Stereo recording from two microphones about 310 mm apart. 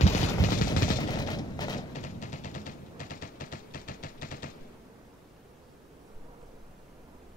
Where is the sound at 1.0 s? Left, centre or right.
Centre.